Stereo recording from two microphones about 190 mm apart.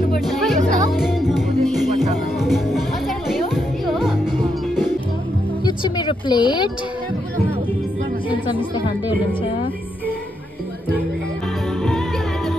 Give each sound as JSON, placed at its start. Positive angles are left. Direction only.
{"t": 0.2, "sound": "music", "side_deg": 0}
{"t": 0.6, "sound": "music", "side_deg": -40}
{"t": 0.9, "sound": "music", "side_deg": 0}
{"t": 5.7, "sound": "a sound", "side_deg": 25}
{"t": 8.3, "sound": "a woman's voice", "side_deg": 25}